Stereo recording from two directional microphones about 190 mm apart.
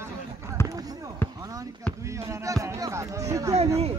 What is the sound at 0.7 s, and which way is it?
Basketball bounce, 20° right (ahead or behind).